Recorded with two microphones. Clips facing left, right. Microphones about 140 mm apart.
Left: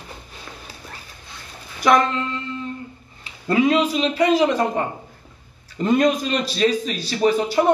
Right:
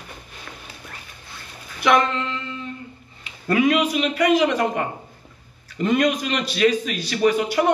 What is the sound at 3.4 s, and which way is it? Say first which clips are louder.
A man's voice: left 1 dB; 30° left (ahead or behind).